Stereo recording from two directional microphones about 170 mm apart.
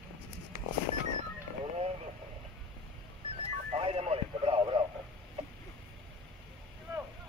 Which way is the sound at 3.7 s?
35° right (ahead or behind).